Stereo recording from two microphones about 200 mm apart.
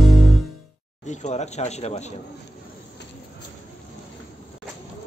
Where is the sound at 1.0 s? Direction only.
35° left (ahead or behind).